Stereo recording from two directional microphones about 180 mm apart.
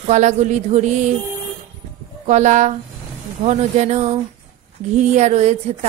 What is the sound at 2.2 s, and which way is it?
Speech, 40° right (ahead or behind).